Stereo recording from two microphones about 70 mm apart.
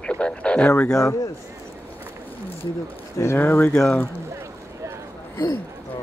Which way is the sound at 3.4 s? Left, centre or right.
Left.